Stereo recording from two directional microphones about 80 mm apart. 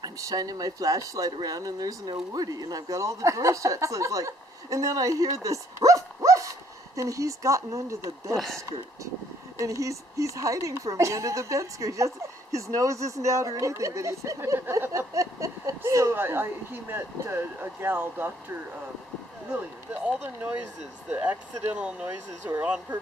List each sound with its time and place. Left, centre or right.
0.0 s speech: right
9.6 s speech: right
16.2 s speech: right
20.2 s speech: right